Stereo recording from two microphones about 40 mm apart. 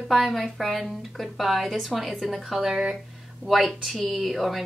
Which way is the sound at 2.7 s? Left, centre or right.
Centre.